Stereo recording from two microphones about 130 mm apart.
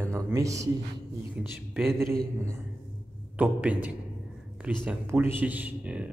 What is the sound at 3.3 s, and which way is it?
Speech, 10° right (ahead or behind).